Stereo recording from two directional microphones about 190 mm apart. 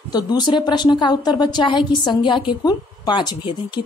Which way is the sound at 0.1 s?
20° left (ahead or behind).